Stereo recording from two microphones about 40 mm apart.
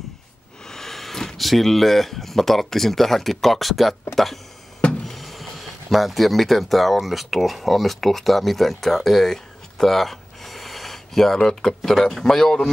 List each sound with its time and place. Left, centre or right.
0.7 s speech: centre